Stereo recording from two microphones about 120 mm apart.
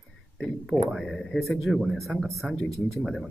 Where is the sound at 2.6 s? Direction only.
25° right (ahead or behind).